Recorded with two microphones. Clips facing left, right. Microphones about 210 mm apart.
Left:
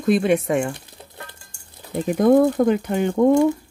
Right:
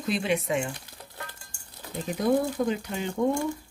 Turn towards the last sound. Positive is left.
turn(degrees=60)  # may be behind; listen again after turning